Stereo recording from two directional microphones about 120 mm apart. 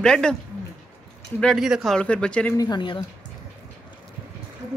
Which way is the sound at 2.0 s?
10° left (ahead or behind).